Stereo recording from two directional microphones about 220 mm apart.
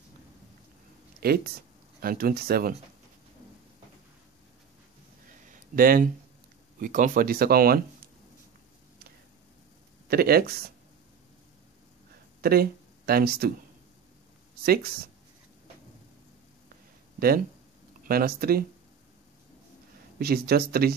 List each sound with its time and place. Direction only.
1.2 s speech: 45° right (ahead or behind)
5.5 s a sound: 40° right (ahead or behind)
6.8 s speech: 35° right (ahead or behind)
10.0 s speech: 45° right (ahead or behind)
12.4 s speech: 45° right (ahead or behind)
14.6 s speech: 45° right (ahead or behind)
18.0 s speech: 40° right (ahead or behind)
20.2 s speech: 45° right (ahead or behind)